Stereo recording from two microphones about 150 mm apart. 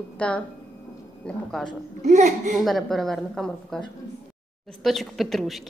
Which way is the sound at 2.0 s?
50° right (ahead or behind).